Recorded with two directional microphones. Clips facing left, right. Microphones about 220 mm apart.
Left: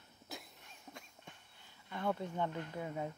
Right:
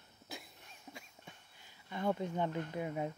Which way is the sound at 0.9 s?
5° right (ahead or behind).